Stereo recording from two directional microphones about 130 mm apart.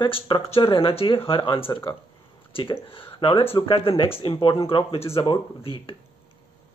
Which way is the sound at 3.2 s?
45° left (ahead or behind).